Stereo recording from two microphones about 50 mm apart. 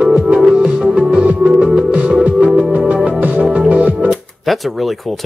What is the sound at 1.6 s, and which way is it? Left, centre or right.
Music, centre.